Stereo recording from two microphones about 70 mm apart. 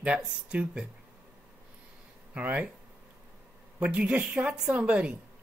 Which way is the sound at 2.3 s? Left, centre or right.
Centre.